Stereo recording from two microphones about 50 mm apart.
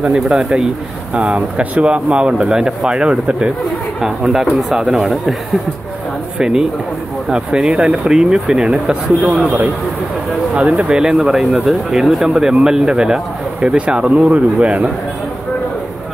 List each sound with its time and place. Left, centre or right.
0.0 s speech: centre
4.0 s speech: centre
6.3 s speech: centre
10.5 s speech: right